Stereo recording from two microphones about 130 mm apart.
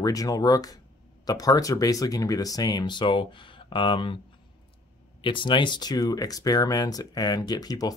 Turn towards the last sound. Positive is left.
turn(degrees=30)  # may be behind; listen again after turning